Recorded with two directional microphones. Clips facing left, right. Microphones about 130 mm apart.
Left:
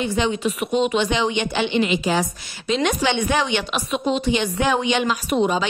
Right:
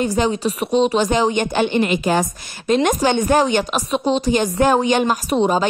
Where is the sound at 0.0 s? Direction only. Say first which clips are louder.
Right 3 dB; 40° right (ahead or behind).